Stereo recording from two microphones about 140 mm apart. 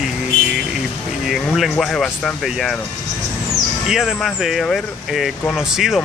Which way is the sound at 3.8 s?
5° right (ahead or behind).